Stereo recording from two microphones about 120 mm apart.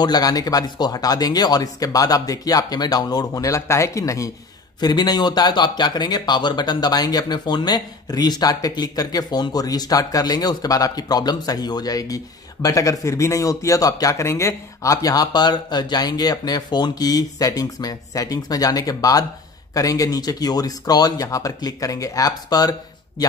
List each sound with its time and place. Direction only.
0.0 s speech: 35° left (ahead or behind)